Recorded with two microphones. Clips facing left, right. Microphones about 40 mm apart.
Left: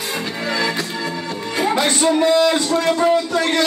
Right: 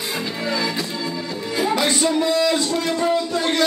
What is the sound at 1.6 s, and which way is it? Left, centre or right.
Music, left.